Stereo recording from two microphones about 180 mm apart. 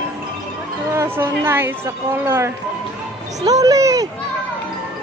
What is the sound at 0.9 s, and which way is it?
A woman's voice, 15° right (ahead or behind).